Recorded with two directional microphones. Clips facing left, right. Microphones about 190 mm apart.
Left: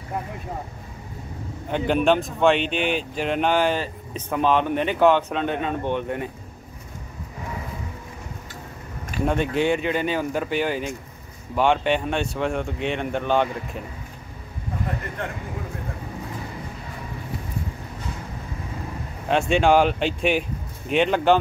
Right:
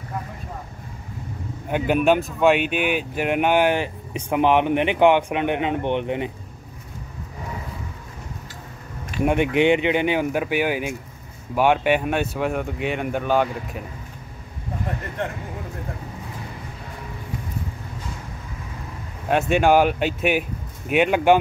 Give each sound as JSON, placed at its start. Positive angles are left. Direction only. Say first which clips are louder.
{"t": 1.7, "sound": "speech", "louder": "right 1 dB", "side_deg": -10}
{"t": 9.2, "sound": "speech", "louder": "right 3 dB", "side_deg": -15}
{"t": 19.2, "sound": "speech", "louder": "right 1 dB", "side_deg": -5}